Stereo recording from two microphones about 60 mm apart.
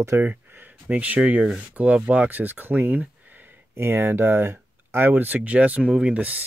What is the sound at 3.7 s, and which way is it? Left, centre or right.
Speech, right.